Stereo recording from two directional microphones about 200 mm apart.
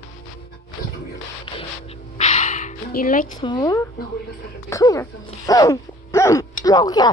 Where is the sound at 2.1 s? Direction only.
40° left (ahead or behind).